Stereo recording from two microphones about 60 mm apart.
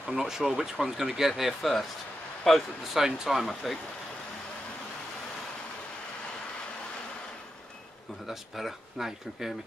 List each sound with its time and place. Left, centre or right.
0.0 s speech: centre
8.3 s speech: centre